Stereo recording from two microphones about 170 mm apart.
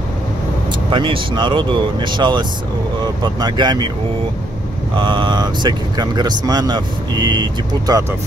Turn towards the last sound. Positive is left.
turn(degrees=-25)  # may be behind; listen again after turning